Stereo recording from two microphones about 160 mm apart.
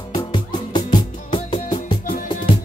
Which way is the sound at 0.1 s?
30° left (ahead or behind).